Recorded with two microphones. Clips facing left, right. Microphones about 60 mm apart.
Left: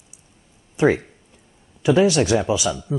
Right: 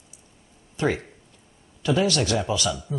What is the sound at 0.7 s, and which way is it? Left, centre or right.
Speech, left.